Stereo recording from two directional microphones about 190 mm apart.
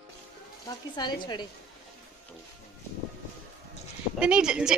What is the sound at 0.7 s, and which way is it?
Speech, 20° left (ahead or behind).